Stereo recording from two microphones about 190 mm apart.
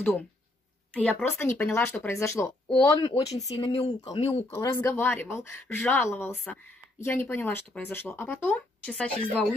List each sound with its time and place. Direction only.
0.9 s speech: 10° left (ahead or behind); by 4.5 s 30° left (ahead or behind)
4.5 s speech: 10° left (ahead or behind)